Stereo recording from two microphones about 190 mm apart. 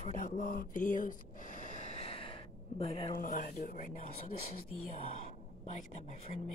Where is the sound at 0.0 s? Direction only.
45° left (ahead or behind); by 3.2 s 30° left (ahead or behind).